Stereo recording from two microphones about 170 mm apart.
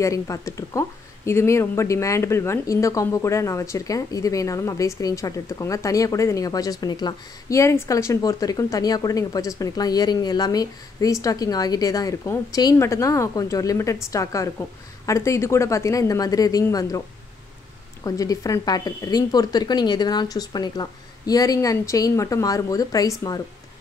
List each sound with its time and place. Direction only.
0.0 s speech: 20° left (ahead or behind)
18.0 s speech: 20° left (ahead or behind)